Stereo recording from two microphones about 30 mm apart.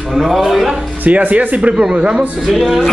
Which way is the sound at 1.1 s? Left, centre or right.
Right.